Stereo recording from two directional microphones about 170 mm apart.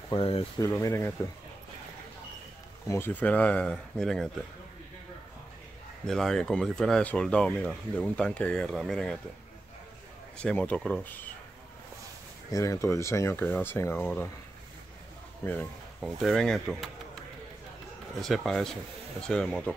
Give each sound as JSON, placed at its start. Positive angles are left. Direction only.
{"t": 0.1, "sound": "speech", "side_deg": 35}
{"t": 0.6, "sound": "speech", "side_deg": 15}
{"t": 2.9, "sound": "speech", "side_deg": 10}
{"t": 6.0, "sound": "speech", "side_deg": 0}
{"t": 10.3, "sound": "speech", "side_deg": 5}
{"t": 12.4, "sound": "speech", "side_deg": 20}
{"t": 15.4, "sound": "speech", "side_deg": 10}
{"t": 18.2, "sound": "speech", "side_deg": 0}